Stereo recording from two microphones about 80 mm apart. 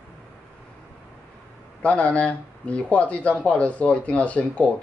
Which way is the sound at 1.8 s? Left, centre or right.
Centre.